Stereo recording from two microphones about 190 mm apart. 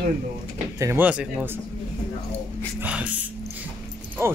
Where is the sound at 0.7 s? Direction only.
15° right (ahead or behind).